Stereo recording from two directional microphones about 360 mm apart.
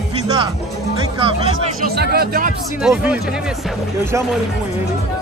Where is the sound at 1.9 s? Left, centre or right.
Right.